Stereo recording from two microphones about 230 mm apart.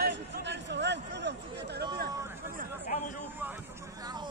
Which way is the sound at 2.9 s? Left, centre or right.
Left.